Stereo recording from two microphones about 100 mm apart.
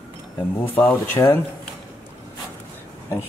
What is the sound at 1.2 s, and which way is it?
Speech, 35° left (ahead or behind).